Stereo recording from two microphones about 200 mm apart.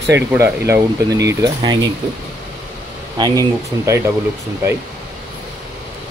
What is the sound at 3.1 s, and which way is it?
Speech, 20° right (ahead or behind).